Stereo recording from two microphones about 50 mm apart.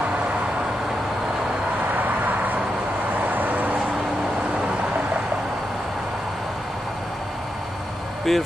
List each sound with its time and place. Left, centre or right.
2.0 s vehicle: right
8.3 s speech: centre